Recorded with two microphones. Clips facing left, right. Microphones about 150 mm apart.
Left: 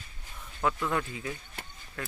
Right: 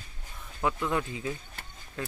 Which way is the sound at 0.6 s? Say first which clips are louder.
Even; 15° right (ahead or behind).